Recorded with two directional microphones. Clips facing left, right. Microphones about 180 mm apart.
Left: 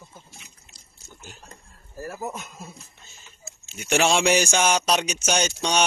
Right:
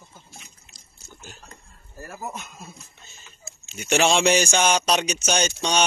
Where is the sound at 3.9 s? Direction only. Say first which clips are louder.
Right 1 dB; 5° left (ahead or behind).